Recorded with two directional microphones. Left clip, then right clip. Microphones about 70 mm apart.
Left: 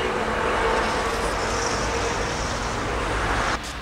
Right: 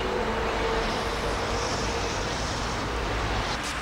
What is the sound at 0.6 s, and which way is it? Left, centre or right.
Vehicle, left.